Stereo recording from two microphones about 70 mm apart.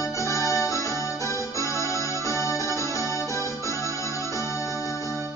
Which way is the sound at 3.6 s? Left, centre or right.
Left.